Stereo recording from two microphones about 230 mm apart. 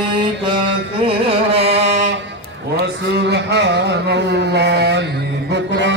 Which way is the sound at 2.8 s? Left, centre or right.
Right.